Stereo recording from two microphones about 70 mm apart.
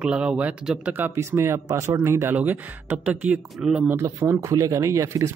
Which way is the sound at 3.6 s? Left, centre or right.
Centre.